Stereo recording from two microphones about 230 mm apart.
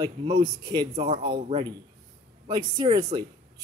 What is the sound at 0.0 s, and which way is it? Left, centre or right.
A man's voice, centre.